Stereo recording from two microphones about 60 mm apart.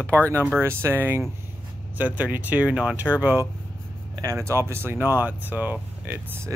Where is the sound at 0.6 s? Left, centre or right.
Right.